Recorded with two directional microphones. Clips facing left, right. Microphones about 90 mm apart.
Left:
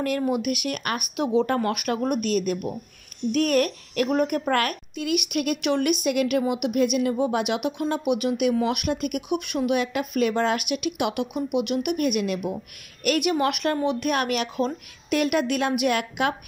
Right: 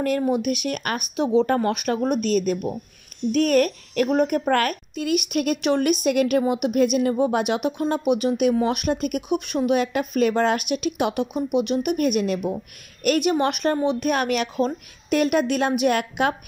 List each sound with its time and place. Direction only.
0.0 s a woman's voice: 35° right (ahead or behind)